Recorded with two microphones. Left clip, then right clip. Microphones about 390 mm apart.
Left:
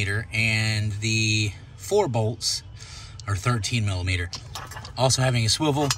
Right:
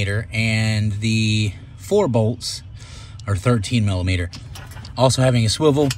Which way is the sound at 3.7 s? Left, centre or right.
Centre.